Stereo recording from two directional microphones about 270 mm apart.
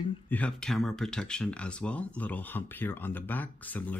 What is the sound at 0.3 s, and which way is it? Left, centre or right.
Speech, centre.